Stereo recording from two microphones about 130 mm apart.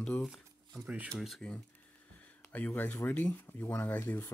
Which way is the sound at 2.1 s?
10° left (ahead or behind).